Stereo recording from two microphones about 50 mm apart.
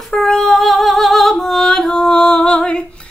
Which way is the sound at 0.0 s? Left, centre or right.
Centre.